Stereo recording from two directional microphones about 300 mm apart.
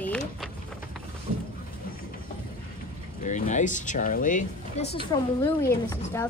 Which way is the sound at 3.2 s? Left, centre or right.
Left.